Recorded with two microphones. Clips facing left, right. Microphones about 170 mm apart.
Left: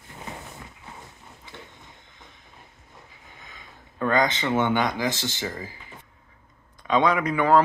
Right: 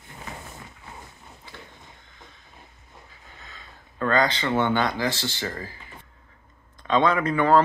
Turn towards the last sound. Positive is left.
turn(degrees=10)  # may be behind; listen again after turning